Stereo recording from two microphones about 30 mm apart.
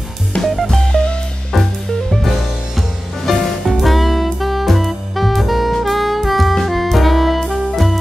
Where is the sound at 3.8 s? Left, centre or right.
Centre.